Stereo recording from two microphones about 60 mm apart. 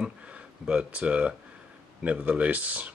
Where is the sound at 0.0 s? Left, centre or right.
Centre.